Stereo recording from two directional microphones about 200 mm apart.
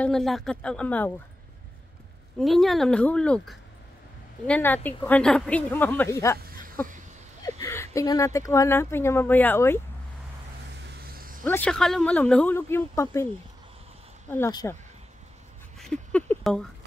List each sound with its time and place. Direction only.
0.0 s a woman's voice: centre (ahead or behind)
2.3 s a woman's voice: centre (ahead or behind)
7.4 s speech: 15° left (ahead or behind)
10.8 s a sound: 55° right (ahead or behind)
11.4 s speech: 10° left (ahead or behind)
14.3 s speech: 15° left (ahead or behind)
15.8 s a sound: 5° left (ahead or behind)